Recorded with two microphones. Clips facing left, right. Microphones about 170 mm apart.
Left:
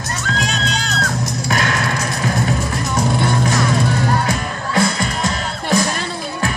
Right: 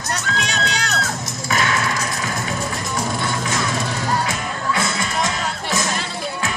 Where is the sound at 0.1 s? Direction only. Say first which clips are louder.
Left 2 dB; 70° right (ahead or behind).